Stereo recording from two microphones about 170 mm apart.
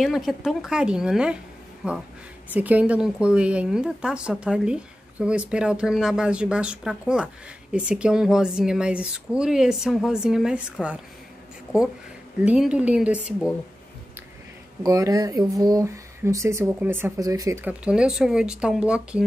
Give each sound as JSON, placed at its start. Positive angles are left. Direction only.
{"t": 0.0, "sound": "speech", "side_deg": 0}
{"t": 12.4, "sound": "speech", "side_deg": -5}
{"t": 14.8, "sound": "speech", "side_deg": -20}